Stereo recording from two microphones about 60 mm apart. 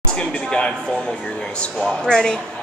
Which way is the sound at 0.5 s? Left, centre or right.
Centre.